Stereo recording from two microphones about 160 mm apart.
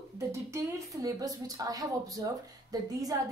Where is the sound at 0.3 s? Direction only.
20° right (ahead or behind).